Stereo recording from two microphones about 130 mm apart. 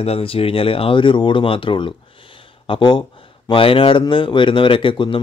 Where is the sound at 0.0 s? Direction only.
50° left (ahead or behind).